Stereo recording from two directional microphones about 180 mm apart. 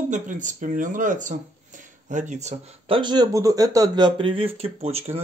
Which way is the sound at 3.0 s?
25° right (ahead or behind).